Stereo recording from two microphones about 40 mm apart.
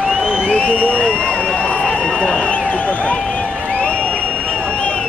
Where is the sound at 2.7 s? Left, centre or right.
Left.